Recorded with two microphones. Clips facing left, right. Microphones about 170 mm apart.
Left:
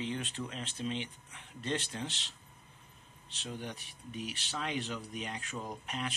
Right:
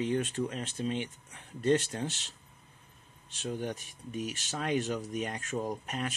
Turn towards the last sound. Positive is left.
turn(degrees=-45)  # may be behind; listen again after turning